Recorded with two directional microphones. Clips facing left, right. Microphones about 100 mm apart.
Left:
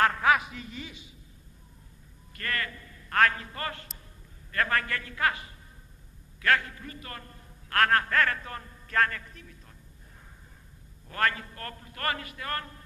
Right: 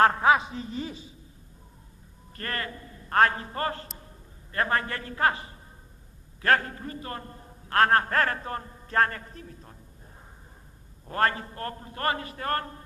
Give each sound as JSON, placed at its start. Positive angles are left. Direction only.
{"t": 0.0, "sound": "a man's voice", "side_deg": -30}
{"t": 2.3, "sound": "a man's voice", "side_deg": -35}
{"t": 11.1, "sound": "a man's voice", "side_deg": -30}